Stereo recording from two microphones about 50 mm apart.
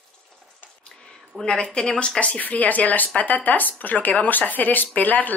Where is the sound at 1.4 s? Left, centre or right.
Centre.